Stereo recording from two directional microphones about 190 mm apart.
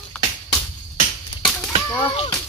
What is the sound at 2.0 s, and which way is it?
Speech, 25° left (ahead or behind).